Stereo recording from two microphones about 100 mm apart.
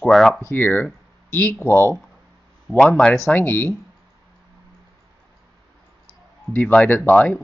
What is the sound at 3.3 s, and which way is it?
Speech, 20° left (ahead or behind).